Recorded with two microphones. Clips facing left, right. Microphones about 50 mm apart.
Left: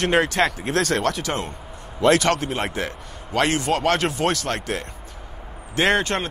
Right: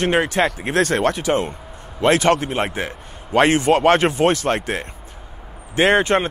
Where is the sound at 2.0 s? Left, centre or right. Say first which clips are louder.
Right 2 dB; right.